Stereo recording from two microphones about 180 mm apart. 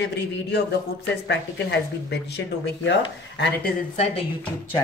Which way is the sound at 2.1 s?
70° left (ahead or behind).